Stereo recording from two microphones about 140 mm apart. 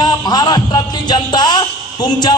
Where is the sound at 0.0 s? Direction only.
30° left (ahead or behind).